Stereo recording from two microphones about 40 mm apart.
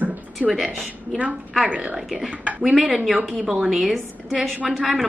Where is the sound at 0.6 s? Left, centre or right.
Right.